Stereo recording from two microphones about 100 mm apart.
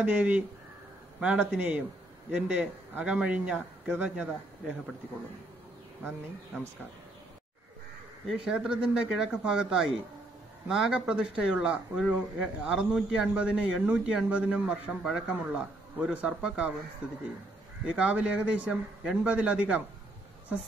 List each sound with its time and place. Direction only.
0.0 s speech: 15° right (ahead or behind)
6.0 s speech: 20° right (ahead or behind)
8.5 s speech: 10° right (ahead or behind)